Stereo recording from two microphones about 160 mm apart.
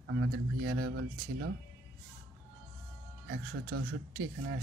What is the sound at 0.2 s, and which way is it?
Speech, 90° right.